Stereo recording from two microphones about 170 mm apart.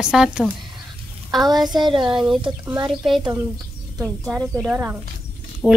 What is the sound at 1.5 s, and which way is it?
Speech, 25° right (ahead or behind).